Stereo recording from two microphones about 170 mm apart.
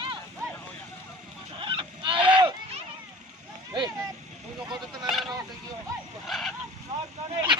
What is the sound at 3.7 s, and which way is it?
Vehicle, 20° right (ahead or behind).